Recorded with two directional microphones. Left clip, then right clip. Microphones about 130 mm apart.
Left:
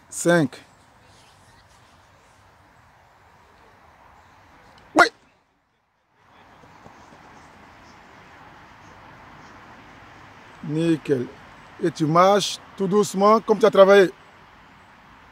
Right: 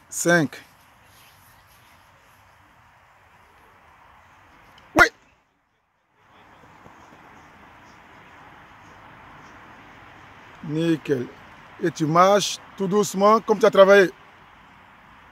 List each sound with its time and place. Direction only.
0.1 s speech: centre (ahead or behind)
4.9 s dog: 5° right (ahead or behind)
7.3 s vehicle: 40° left (ahead or behind)
9.7 s vehicle: 50° left (ahead or behind)
10.7 s a sound: 5° left (ahead or behind)
11.3 s a sound: 50° left (ahead or behind)
11.8 s speech: 5° left (ahead or behind)